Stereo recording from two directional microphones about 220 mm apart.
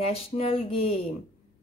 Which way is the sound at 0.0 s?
25° left (ahead or behind).